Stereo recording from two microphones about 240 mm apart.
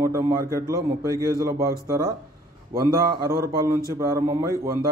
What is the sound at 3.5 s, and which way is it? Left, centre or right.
A man's voice, centre.